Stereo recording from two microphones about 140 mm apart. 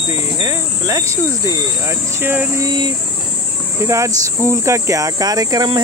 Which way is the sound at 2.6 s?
30° right (ahead or behind).